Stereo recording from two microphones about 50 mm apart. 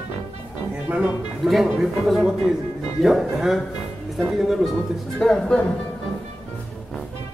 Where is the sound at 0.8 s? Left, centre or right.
Right.